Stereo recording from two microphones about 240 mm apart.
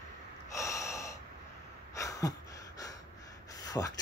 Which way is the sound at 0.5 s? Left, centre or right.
Centre.